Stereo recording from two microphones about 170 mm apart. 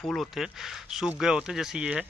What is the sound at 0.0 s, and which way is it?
Speech, 5° left (ahead or behind).